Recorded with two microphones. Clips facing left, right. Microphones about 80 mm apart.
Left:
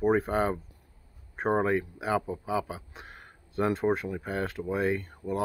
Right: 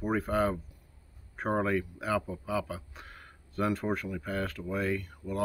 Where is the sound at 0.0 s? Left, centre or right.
Left.